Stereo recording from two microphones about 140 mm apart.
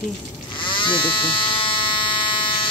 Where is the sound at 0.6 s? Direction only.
35° left (ahead or behind).